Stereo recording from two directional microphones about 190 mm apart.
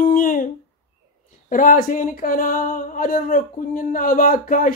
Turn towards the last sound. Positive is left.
turn(degrees=45)  # may be behind; listen again after turning